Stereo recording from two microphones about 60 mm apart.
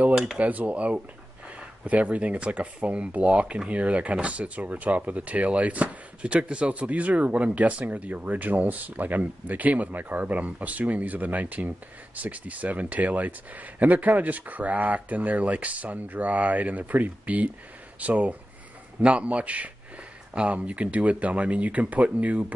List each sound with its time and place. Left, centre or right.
0.1 s speech: centre
0.4 s speech: right